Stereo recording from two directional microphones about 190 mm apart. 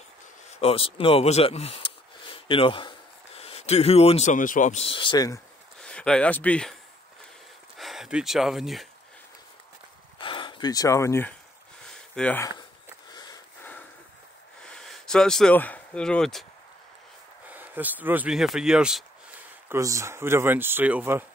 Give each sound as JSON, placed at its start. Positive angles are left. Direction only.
{"t": 0.5, "sound": "speech", "side_deg": 30}
{"t": 5.8, "sound": "speech", "side_deg": 5}
{"t": 10.2, "sound": "speech", "side_deg": 25}
{"t": 11.8, "sound": "a sound", "side_deg": 5}
{"t": 13.1, "sound": "sniff", "side_deg": 20}
{"t": 14.6, "sound": "speech", "side_deg": 5}
{"t": 17.5, "sound": "speech", "side_deg": -10}
{"t": 19.7, "sound": "speech", "side_deg": -15}